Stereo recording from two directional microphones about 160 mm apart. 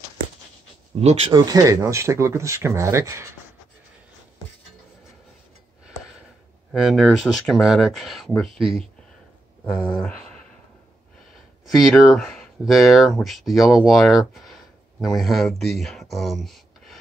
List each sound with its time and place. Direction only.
1.0 s speech: 35° right (ahead or behind); by 3.3 s 20° right (ahead or behind)
6.7 s speech: centre (ahead or behind)
9.8 s a sound: 5° left (ahead or behind)
11.6 s speech: centre (ahead or behind)